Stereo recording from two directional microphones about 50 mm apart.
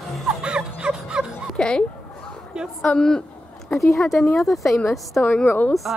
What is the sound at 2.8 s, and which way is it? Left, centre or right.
A woman's voice, centre.